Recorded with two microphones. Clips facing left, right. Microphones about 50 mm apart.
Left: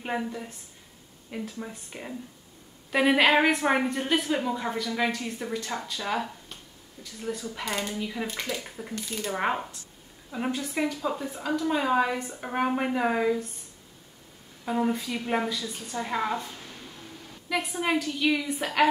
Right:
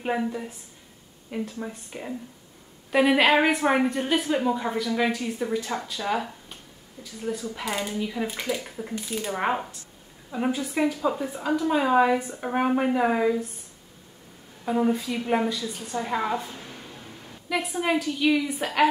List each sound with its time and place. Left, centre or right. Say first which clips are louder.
0.0 s a woman's voice: right 4 dB; centre
14.6 s a woman's voice: right 3 dB; centre
16.5 s a sound: right 3 dB; right
17.5 s a woman's voice: right 2 dB; centre